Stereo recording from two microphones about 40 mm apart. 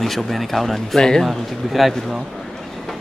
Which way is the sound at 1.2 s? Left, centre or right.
Centre.